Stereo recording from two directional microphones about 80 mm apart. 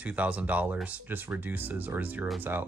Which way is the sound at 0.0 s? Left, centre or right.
Centre.